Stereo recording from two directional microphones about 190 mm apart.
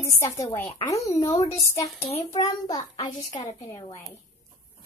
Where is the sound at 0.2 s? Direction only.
15° left (ahead or behind).